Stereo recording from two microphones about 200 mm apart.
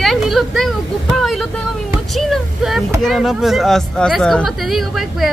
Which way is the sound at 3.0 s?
Centre (ahead or behind).